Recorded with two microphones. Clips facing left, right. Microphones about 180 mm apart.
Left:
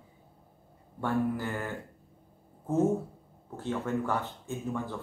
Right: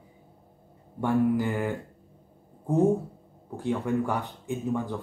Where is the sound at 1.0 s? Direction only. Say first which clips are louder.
Right 6 dB; 15° right (ahead or behind).